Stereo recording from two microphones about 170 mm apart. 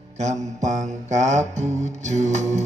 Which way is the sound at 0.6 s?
45° right (ahead or behind).